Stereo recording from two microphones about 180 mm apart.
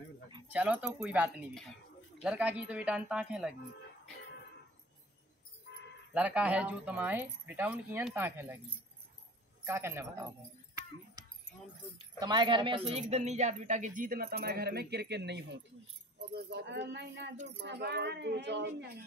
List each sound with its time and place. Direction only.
0.5 s speech: 5° right (ahead or behind)
6.1 s speech: 5° right (ahead or behind)
9.7 s speech: 15° right (ahead or behind)
12.2 s speech: 25° right (ahead or behind); by 18.7 s 75° right (ahead or behind)